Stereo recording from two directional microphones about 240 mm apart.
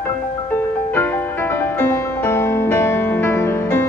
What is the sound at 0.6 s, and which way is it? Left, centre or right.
Music, centre.